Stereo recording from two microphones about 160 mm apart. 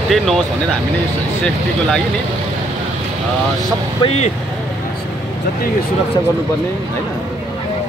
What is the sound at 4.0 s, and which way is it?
Speech, 40° left (ahead or behind).